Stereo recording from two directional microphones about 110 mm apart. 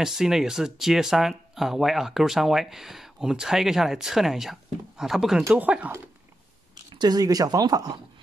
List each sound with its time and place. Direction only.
0.0 s speech: 5° right (ahead or behind)
6.9 s speech: 40° right (ahead or behind)